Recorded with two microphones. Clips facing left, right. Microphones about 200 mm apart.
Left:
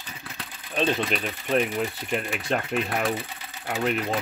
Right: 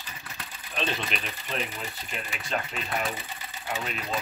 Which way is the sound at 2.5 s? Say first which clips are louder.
Left 5 dB; 60° left (ahead or behind).